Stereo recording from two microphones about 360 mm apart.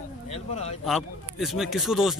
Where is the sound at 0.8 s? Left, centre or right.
Centre.